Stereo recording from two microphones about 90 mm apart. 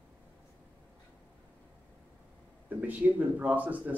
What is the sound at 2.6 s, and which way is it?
Speech, 20° right (ahead or behind).